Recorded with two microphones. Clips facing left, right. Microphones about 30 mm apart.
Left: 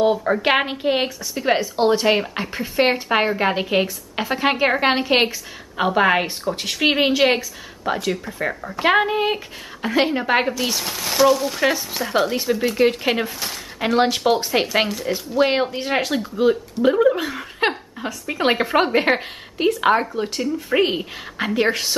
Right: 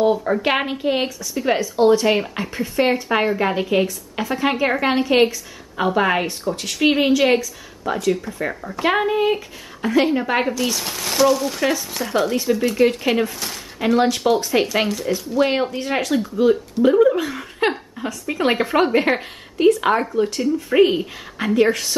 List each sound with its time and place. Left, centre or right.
0.0 s speech: centre
2.8 s a woman's voice: left
5.8 s a woman's voice: centre
10.4 s speech: centre
21.5 s a woman's voice: left